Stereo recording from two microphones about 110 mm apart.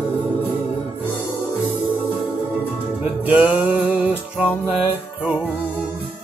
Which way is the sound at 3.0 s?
10° right (ahead or behind).